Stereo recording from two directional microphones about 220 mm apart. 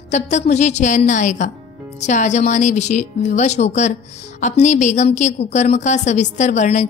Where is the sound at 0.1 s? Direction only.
30° left (ahead or behind).